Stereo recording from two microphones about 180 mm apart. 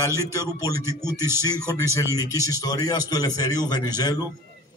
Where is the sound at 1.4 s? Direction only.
20° left (ahead or behind).